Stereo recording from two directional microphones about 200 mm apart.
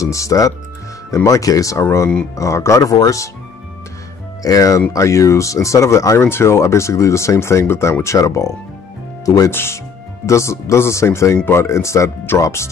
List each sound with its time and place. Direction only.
0.0 s speech: 15° left (ahead or behind)
4.4 s speech: 15° left (ahead or behind)